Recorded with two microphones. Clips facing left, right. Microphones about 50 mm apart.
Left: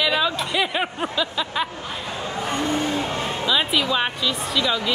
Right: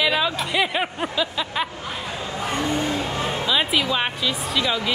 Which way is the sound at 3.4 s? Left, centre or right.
Centre.